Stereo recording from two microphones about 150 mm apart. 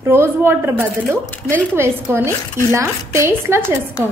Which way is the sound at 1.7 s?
15° right (ahead or behind).